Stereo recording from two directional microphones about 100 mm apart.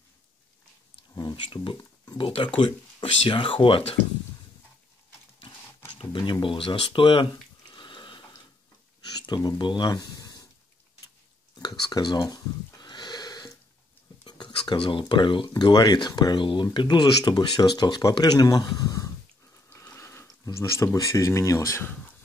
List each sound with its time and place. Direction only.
1.1 s speech: 50° left (ahead or behind)
5.9 s a sound: 55° left (ahead or behind)
6.4 s speech: 60° left (ahead or behind)
7.7 s water: 50° left (ahead or behind)
9.1 s speech: 45° left (ahead or behind)
11.5 s a sound: 45° left (ahead or behind)
14.2 s speech: 50° left (ahead or behind)
15.4 s speech: 40° left (ahead or behind)
19.7 s a sound: 25° left (ahead or behind)
20.5 s speech: 30° left (ahead or behind)